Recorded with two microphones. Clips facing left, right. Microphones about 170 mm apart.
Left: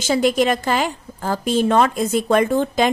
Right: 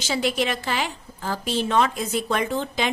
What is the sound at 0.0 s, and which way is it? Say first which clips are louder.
A woman's voice: left 7 dB; 50° left (ahead or behind).